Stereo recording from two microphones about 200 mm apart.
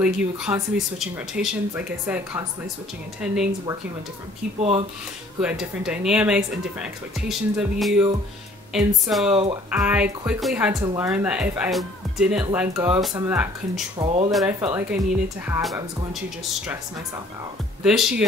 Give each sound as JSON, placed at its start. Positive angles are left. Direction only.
{"t": 0.0, "sound": "speech", "side_deg": -5}
{"t": 4.6, "sound": "speech", "side_deg": -30}
{"t": 5.4, "sound": "speech", "side_deg": -5}
{"t": 10.7, "sound": "speech", "side_deg": -15}
{"t": 11.1, "sound": "speech", "side_deg": -5}
{"t": 13.9, "sound": "speech", "side_deg": -25}
{"t": 14.6, "sound": "speech", "side_deg": -15}
{"t": 17.8, "sound": "speech", "side_deg": -5}